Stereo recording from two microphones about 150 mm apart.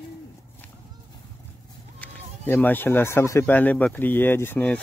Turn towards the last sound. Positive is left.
turn(degrees=10)  # may be behind; listen again after turning